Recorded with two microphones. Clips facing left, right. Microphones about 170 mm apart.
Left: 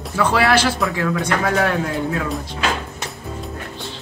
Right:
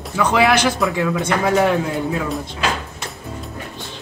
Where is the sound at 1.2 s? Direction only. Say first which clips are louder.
Right 4 dB; 20° right (ahead or behind).